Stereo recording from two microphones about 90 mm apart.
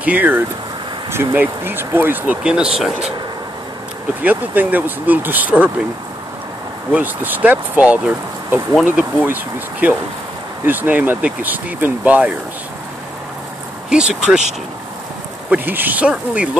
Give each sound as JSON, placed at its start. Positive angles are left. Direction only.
{"t": 0.0, "sound": "speech", "side_deg": -20}
{"t": 2.4, "sound": "speech", "side_deg": -10}
{"t": 4.2, "sound": "speech", "side_deg": -20}
{"t": 6.9, "sound": "speech", "side_deg": -20}
{"t": 13.8, "sound": "speech", "side_deg": -10}
{"t": 15.5, "sound": "speech", "side_deg": -20}